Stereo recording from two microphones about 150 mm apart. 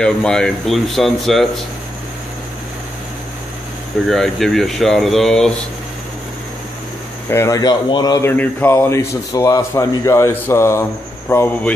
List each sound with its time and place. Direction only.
0.0 s speech: 5° left (ahead or behind)
4.1 s speech: centre (ahead or behind)
7.2 s speech: 20° left (ahead or behind)
8.3 s speech: 15° left (ahead or behind)